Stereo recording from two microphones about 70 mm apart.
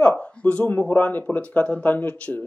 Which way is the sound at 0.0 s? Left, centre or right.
Centre.